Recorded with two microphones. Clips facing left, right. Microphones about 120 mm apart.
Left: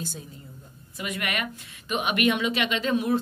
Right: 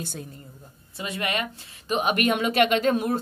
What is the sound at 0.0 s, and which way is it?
Speech, 60° right (ahead or behind).